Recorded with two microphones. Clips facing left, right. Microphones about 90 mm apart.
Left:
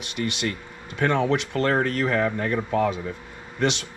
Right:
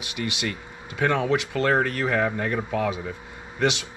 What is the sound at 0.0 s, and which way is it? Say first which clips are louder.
Speech: left 2 dB; 15° right (ahead or behind).